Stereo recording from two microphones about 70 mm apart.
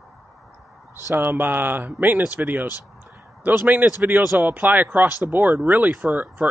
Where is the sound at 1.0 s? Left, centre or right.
Right.